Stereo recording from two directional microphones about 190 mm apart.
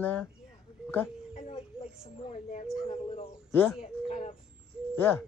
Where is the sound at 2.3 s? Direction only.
40° left (ahead or behind).